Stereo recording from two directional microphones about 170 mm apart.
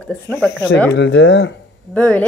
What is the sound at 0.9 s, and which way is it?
Speech, 90° left.